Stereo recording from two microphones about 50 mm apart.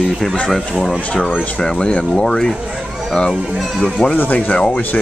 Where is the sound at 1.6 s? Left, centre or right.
Centre.